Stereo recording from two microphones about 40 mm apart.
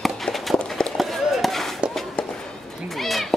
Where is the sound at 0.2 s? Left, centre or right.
Centre.